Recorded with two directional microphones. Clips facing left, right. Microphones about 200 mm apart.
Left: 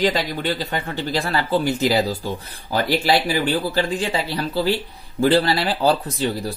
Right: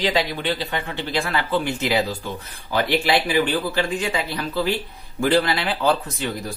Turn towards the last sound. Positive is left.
turn(degrees=35)  # may be behind; listen again after turning